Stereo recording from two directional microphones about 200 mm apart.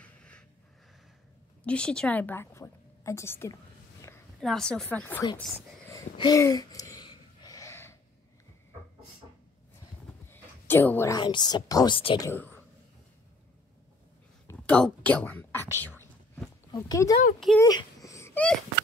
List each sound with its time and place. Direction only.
0.0 s a sound: 5° left (ahead or behind)
1.6 s a woman's voice: 5° left (ahead or behind)
4.4 s a woman's voice: 5° left (ahead or behind)
5.9 s a sound: 20° left (ahead or behind)
10.2 s a woman's voice: 10° left (ahead or behind)
12.3 s speech: 10° left (ahead or behind)
14.5 s whispering: 5° left (ahead or behind)
17.6 s wail: 15° left (ahead or behind)